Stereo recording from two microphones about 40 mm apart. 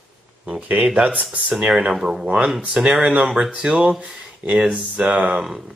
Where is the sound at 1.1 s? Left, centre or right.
Right.